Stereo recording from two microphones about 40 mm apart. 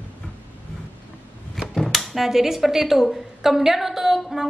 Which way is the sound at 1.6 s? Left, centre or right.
Centre.